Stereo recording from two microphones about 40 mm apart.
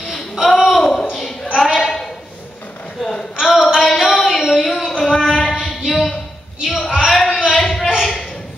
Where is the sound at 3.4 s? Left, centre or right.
Centre.